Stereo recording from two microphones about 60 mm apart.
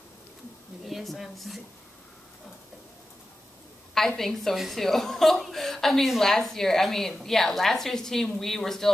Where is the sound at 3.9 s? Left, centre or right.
Centre.